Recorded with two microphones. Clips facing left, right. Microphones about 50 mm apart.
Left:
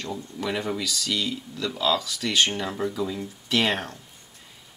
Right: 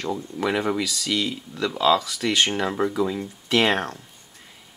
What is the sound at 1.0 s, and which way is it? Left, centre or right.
Speech, centre.